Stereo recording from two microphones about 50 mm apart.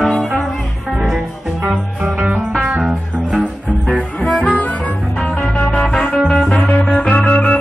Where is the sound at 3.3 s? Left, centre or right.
Centre.